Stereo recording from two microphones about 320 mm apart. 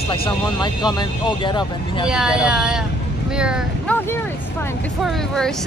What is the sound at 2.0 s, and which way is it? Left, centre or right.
A woman's voice, centre.